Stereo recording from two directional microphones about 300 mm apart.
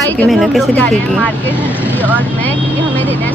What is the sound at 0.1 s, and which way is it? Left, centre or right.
Speech, centre.